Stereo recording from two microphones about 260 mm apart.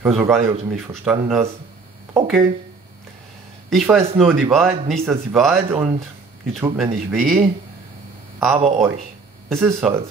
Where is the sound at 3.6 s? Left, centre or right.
Centre.